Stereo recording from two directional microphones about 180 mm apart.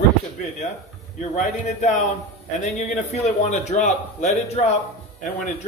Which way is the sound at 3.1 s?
40° left (ahead or behind).